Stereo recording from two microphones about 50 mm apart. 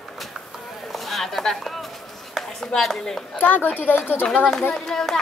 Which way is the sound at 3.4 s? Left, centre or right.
Left.